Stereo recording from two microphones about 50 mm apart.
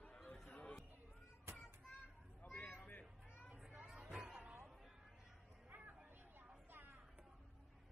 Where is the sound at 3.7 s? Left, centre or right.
Right.